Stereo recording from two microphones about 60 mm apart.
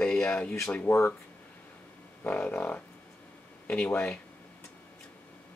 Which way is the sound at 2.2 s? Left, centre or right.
Centre.